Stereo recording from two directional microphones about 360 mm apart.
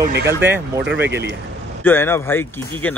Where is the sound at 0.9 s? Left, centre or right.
Right.